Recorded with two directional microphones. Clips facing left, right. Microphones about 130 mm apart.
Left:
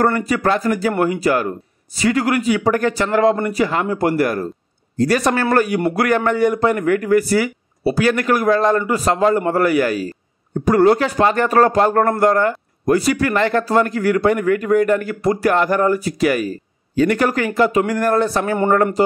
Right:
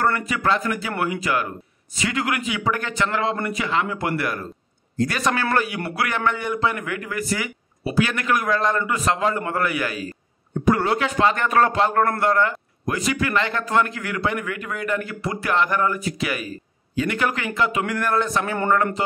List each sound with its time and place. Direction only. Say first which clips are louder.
0.0 s a man's voice: left 5 dB; 40° left (ahead or behind)